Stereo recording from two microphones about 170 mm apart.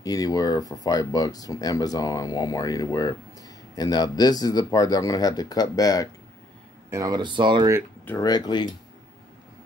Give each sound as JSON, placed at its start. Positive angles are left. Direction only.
{"t": 0.0, "sound": "speech", "side_deg": 20}
{"t": 6.9, "sound": "speech", "side_deg": -20}
{"t": 8.2, "sound": "speech", "side_deg": 25}